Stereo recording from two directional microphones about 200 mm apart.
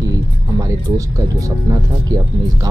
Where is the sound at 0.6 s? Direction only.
15° right (ahead or behind).